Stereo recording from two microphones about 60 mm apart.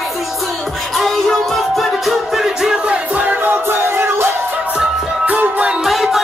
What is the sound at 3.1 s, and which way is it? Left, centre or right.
Music, right.